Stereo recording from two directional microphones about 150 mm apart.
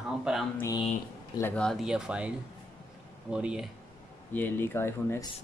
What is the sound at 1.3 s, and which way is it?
Speech, 10° left (ahead or behind).